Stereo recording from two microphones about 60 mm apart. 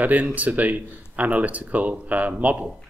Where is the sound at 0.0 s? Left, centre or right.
Right.